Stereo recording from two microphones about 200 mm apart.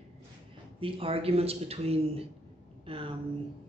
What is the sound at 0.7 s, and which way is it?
A man's voice, 25° right (ahead or behind).